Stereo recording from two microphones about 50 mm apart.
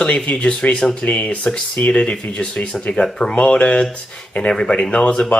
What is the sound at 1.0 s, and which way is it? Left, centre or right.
Speech, left.